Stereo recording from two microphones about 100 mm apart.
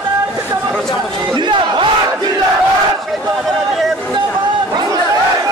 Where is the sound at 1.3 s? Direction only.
50° right (ahead or behind).